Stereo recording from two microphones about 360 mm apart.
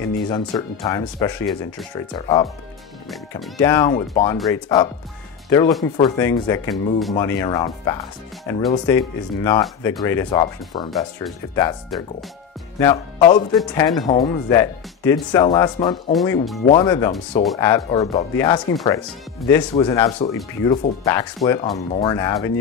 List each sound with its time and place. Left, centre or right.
0.3 s speech: centre
16.1 s speech: centre
16.6 s speech: centre
18.7 s speech: left
19.4 s speech: centre